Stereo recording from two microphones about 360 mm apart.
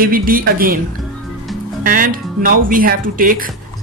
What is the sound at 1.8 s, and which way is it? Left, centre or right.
Speech, right.